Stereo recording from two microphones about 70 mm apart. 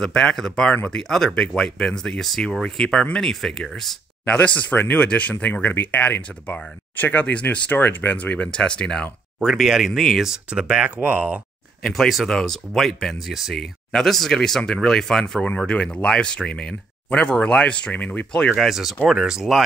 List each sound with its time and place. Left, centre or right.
0.0 s speech: centre
4.3 s speech: left
9.4 s speech: centre
10.5 s speech: centre
11.9 s speech: centre
18.7 s speech: centre